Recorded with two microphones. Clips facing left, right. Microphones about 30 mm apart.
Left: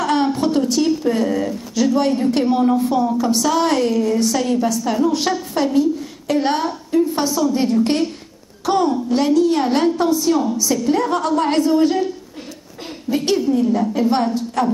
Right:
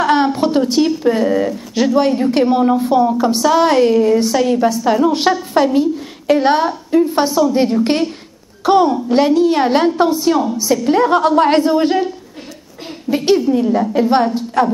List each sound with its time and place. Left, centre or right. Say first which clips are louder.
0.0 s a sound: right 4 dB; right
2.0 s a woman's voice: right 6 dB; centre
13.1 s a woman's voice: right 4 dB; centre